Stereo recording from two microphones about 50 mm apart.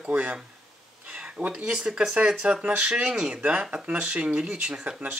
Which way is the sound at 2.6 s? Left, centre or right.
Right.